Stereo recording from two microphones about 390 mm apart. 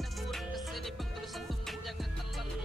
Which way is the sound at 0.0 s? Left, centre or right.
Centre.